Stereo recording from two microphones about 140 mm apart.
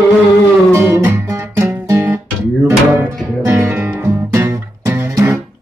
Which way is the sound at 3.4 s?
15° right (ahead or behind).